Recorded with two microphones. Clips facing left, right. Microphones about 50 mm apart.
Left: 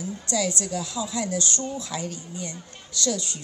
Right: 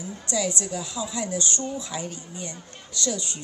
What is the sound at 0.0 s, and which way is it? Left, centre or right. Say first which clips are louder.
A woman's voice: left 1 dB; right.